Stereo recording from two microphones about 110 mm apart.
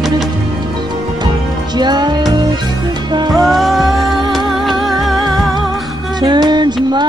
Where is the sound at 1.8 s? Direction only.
40° right (ahead or behind).